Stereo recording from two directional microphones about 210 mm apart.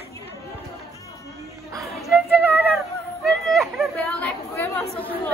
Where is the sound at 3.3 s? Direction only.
Centre (ahead or behind).